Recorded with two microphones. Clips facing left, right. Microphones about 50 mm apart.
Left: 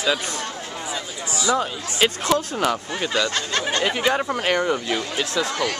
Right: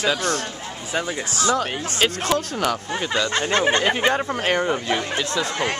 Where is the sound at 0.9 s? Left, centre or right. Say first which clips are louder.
Right 8 dB; right.